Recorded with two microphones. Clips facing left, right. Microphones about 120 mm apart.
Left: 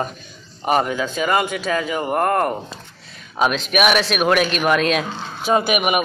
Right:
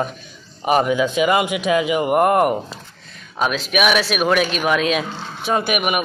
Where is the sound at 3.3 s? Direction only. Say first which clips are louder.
Left 1 dB; centre (ahead or behind).